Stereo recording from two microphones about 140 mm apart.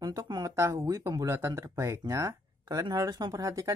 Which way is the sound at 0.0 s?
25° right (ahead or behind).